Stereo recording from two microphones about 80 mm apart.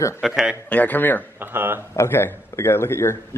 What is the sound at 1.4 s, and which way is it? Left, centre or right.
Speech, right.